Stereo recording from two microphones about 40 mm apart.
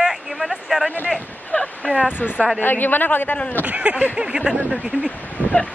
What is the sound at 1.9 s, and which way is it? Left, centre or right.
Speech, right.